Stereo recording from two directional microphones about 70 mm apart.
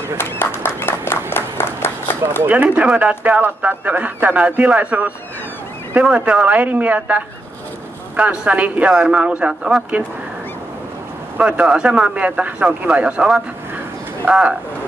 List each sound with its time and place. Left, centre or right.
0.2 s a sound: left
2.4 s speech: centre
11.3 s speech: centre